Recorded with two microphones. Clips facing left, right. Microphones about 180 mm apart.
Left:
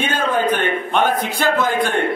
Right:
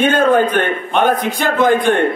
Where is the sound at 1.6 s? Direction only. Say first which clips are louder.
Right 6 dB; 55° right (ahead or behind).